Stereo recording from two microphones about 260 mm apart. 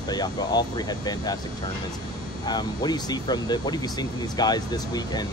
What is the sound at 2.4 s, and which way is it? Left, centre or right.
Speech, centre.